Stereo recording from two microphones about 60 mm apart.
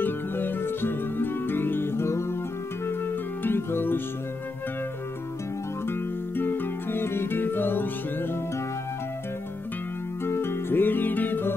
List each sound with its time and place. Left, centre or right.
0.0 s music: left
3.4 s music: left
5.9 s music: left
10.2 s music: left